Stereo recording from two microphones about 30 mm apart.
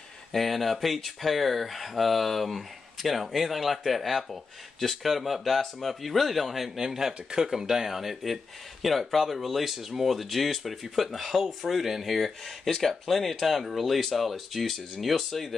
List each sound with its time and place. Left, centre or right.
0.3 s speech: centre; by 7.5 s right
7.5 s speech: centre